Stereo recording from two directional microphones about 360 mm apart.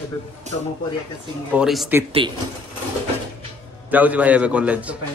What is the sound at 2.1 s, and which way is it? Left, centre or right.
Speech, centre.